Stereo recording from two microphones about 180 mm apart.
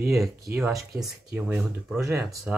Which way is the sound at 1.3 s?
5° right (ahead or behind).